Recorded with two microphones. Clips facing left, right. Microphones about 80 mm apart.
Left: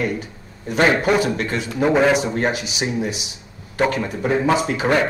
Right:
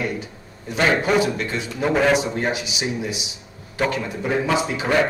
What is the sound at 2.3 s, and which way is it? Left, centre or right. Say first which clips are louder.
Speech: left 2 dB; left.